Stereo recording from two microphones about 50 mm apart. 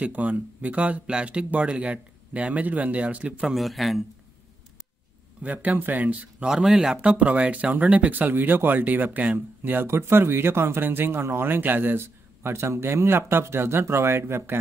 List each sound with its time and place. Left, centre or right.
0.0 s speech: right
3.5 s a man's voice: centre
5.4 s speech: right
6.4 s speech: centre; by 9.4 s right
9.6 s speech: right
9.8 s speech: right